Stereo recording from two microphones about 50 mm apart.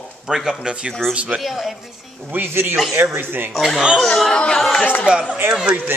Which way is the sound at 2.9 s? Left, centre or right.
Right.